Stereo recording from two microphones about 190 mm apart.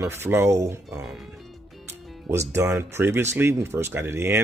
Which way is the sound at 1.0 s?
Centre (ahead or behind).